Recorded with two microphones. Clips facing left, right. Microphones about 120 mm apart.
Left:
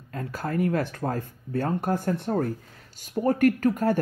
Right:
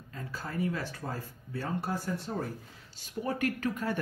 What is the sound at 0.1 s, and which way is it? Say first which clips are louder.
A man's voice: left 9 dB; 60° left (ahead or behind).